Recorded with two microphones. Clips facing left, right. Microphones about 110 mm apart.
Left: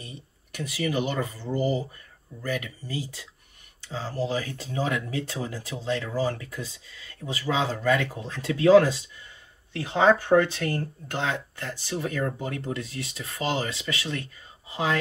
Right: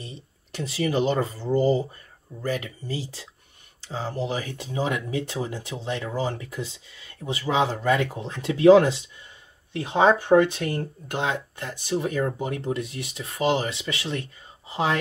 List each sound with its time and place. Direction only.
0.0 s speech: 25° right (ahead or behind)